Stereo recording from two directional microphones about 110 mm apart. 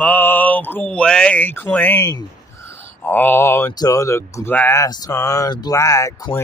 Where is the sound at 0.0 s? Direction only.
15° left (ahead or behind).